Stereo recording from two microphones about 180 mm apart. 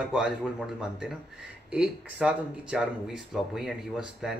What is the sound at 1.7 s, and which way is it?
Speech, 5° right (ahead or behind).